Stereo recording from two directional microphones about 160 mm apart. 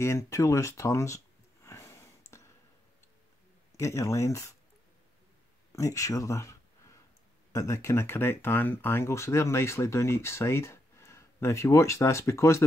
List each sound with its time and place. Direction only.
0.0 s a sound: 15° left (ahead or behind)
3.7 s speech: 20° left (ahead or behind)
5.7 s speech: 20° left (ahead or behind)